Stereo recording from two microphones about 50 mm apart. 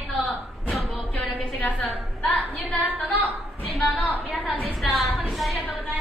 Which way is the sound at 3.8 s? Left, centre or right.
Left.